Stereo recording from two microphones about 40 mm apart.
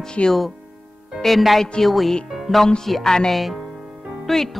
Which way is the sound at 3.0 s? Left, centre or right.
Centre.